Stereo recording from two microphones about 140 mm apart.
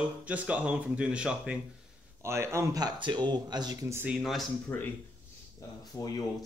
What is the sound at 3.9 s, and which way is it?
Speech, 15° right (ahead or behind).